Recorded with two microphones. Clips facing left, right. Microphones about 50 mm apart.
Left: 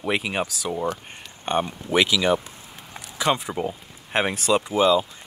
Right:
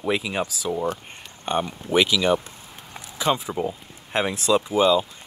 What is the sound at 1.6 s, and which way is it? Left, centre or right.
Speech, centre.